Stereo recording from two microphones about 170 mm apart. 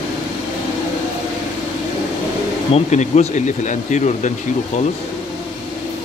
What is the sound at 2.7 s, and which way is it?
Speech, 40° left (ahead or behind).